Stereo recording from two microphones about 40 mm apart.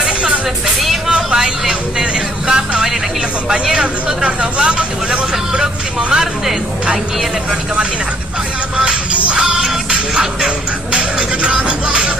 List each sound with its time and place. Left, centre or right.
0.7 s vehicle: centre
1.3 s music: centre
3.7 s vehicle: right
8.7 s music: right